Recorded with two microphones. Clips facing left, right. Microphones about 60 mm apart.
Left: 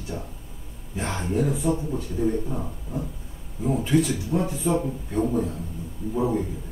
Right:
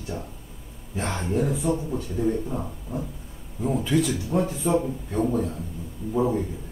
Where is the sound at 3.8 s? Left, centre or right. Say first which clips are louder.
Left 2 dB; left.